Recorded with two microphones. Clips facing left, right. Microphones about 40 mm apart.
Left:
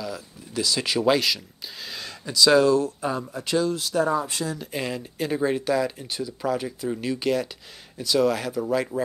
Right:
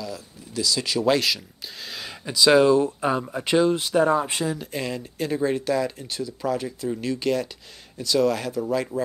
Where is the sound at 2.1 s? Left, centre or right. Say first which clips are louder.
Right 1 dB; centre.